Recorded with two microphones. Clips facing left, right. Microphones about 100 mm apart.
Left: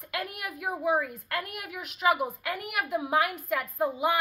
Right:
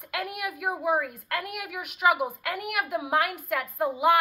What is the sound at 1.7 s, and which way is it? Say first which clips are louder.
Speech: right 3 dB; 75° right (ahead or behind).